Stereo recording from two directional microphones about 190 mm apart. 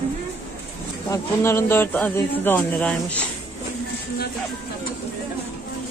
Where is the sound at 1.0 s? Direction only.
15° left (ahead or behind).